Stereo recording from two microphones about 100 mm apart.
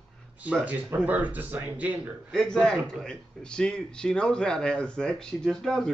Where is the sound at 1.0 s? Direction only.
15° right (ahead or behind).